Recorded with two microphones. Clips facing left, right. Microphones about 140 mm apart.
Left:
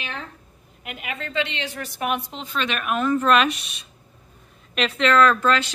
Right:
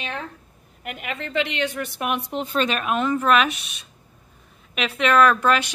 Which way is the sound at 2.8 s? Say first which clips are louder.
Even; 20° right (ahead or behind).